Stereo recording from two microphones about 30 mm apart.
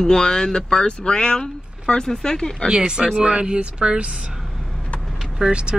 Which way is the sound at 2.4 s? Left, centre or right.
Left.